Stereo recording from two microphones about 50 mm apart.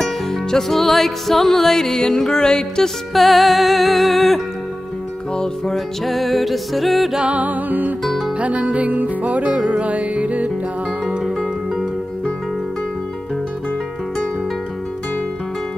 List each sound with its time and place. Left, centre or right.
0.0 s music: centre
3.1 s music: centre
5.3 s music: centre
6.0 s music: centre
7.2 s music: right